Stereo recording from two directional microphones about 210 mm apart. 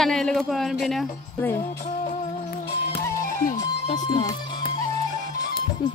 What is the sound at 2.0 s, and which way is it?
Music, 45° left (ahead or behind).